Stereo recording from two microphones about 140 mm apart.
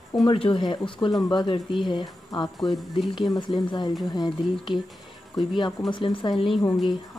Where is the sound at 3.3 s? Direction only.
35° left (ahead or behind).